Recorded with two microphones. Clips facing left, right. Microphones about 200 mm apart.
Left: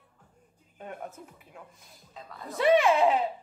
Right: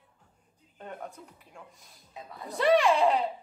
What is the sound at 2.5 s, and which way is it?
Speech, centre (ahead or behind).